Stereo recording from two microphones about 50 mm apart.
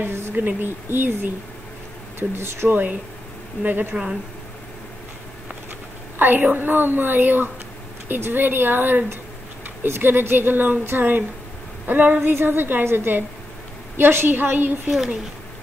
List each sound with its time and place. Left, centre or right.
0.3 s a woman's voice: right
2.7 s a woman's voice: right
3.9 s speech: centre
6.1 s a woman's voice: right